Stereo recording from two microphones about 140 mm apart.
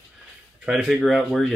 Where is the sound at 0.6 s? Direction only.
5° right (ahead or behind).